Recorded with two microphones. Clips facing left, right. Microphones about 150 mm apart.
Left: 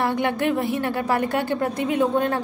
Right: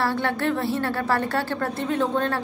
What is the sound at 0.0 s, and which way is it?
A woman's voice, 15° left (ahead or behind).